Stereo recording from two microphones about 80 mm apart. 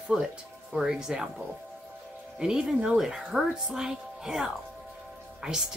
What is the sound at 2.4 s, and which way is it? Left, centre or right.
A woman's voice, centre.